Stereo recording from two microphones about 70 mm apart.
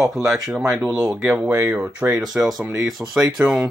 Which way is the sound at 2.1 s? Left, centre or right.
Centre.